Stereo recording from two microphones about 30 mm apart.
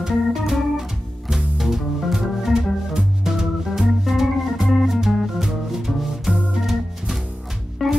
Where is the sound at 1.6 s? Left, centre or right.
Centre.